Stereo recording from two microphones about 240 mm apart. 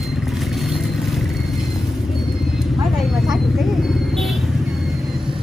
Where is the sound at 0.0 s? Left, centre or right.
Centre.